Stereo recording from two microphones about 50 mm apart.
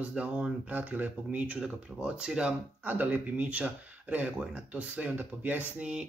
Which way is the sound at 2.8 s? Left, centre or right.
Right.